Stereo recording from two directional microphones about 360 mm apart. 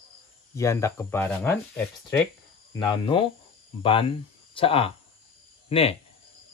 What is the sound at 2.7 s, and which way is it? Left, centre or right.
Speech, centre.